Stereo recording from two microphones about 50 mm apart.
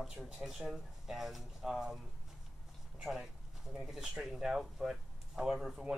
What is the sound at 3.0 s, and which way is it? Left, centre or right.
Speech, centre.